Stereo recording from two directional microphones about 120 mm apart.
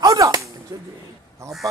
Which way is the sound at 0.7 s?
25° right (ahead or behind).